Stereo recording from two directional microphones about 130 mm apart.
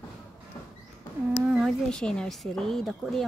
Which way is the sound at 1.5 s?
5° left (ahead or behind).